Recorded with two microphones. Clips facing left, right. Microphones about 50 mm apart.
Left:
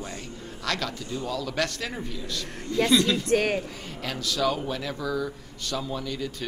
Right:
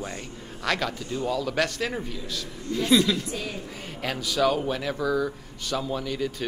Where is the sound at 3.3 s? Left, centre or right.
Left.